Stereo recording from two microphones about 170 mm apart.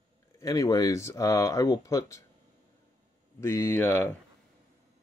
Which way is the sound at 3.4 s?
15° left (ahead or behind).